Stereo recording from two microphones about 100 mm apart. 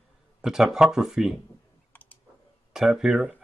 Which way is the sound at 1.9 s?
20° left (ahead or behind).